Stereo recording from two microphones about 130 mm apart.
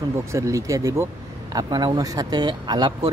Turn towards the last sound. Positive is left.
turn(degrees=-35)  # may be behind; listen again after turning